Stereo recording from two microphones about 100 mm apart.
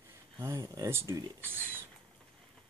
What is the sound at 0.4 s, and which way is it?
Speech, 30° right (ahead or behind).